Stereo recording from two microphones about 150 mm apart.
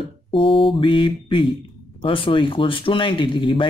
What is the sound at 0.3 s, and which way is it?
Speech, 35° left (ahead or behind).